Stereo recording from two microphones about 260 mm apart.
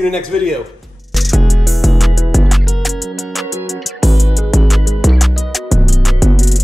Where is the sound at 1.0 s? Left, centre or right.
Centre.